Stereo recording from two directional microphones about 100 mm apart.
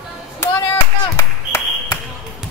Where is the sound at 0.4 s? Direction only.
30° left (ahead or behind).